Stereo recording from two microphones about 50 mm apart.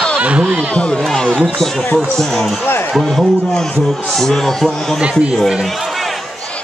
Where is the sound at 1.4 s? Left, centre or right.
Centre.